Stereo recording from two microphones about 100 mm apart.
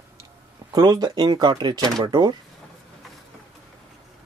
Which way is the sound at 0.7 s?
45° right (ahead or behind).